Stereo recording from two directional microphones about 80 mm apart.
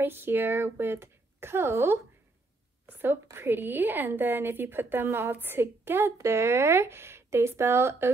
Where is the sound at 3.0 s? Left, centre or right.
Right.